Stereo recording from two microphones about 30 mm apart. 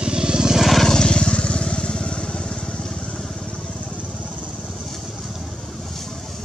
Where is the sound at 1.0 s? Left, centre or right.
Left.